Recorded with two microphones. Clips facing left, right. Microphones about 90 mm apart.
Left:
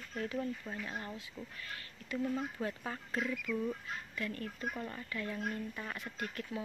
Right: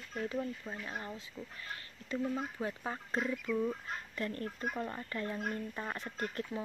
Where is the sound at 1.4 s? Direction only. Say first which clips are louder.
Right 1 dB; 5° right (ahead or behind).